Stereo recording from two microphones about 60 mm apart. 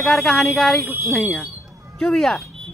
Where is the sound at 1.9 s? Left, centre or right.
Centre.